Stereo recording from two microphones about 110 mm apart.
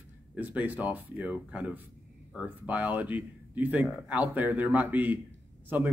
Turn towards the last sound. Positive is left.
turn(degrees=-15)  # may be behind; listen again after turning